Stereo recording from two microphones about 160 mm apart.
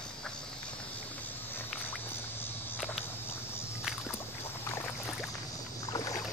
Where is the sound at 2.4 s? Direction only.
15° left (ahead or behind).